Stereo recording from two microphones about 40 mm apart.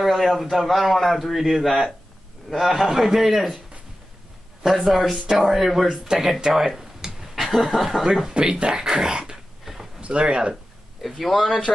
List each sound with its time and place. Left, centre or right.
0.0 s a man's voice: centre
4.6 s a man's voice: centre
6.4 s speech: centre
6.7 s a sound: centre
7.3 s speech: centre
8.4 s speech: right
8.8 s dog: centre
9.9 s speech: right
10.5 s a sound: centre
11.1 s speech: centre